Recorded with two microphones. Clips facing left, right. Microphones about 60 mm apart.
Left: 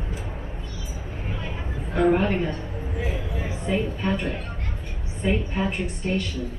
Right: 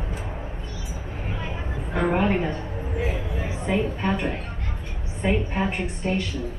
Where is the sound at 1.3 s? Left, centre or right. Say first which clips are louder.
Right 1 dB; centre.